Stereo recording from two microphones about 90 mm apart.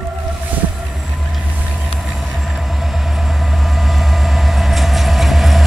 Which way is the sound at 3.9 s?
Centre (ahead or behind).